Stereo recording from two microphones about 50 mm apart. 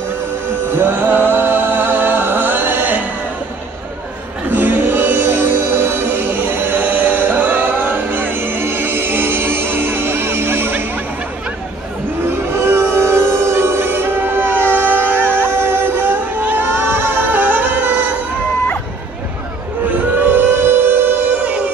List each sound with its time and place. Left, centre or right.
0.7 s music: right
4.5 s music: right
12.3 s music: right
20.2 s music: right
21.2 s music: right